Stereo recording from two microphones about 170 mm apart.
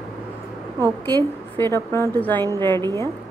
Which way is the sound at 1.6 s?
15° left (ahead or behind).